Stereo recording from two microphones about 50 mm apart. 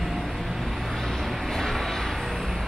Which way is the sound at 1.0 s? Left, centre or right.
Centre.